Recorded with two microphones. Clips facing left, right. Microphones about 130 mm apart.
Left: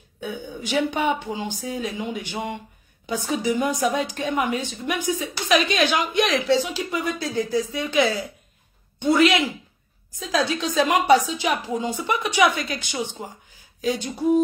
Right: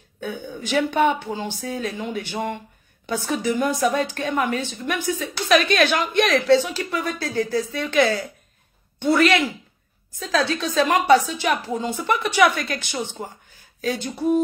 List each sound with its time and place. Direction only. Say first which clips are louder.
0.2 s a woman's voice: right 1 dB; 10° left (ahead or behind)
8.0 s a woman's voice: right 2 dB; centre (ahead or behind)
9.1 s a woman's voice: even; 15° left (ahead or behind)
13.7 s a sound: left 1 dB; 15° left (ahead or behind)
14.1 s a woman's voice: left 1 dB; 15° left (ahead or behind)